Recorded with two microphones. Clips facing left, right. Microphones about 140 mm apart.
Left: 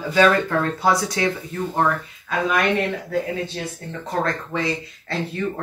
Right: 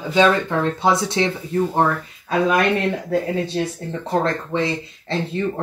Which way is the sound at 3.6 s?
25° right (ahead or behind).